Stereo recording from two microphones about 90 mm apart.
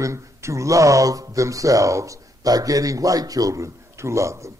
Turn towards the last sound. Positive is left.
turn(degrees=-35)  # may be behind; listen again after turning